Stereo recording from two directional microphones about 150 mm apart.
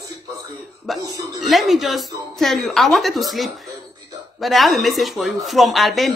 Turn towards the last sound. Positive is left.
turn(degrees=0)  # may be behind; listen again after turning